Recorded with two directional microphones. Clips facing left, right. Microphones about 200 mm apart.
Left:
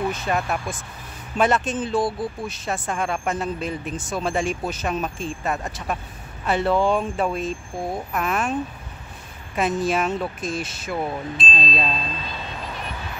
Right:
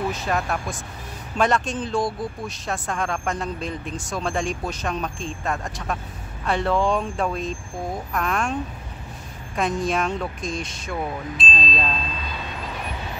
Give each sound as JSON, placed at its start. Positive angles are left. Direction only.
{"t": 0.1, "sound": "speech", "side_deg": 0}
{"t": 9.6, "sound": "speech", "side_deg": 5}